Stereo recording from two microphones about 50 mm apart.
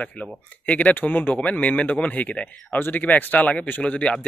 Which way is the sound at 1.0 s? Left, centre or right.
Left.